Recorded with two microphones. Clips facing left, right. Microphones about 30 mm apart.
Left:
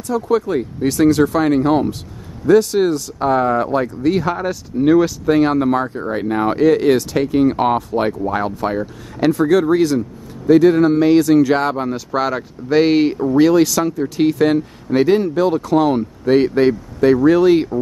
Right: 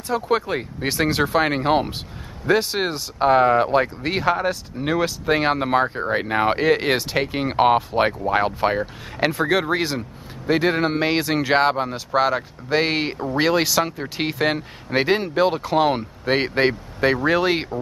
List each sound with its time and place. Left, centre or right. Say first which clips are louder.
0.1 s speech: left 4 dB; right
11.8 s speech: left 1 dB; centre
13.1 s speech: left 7 dB; right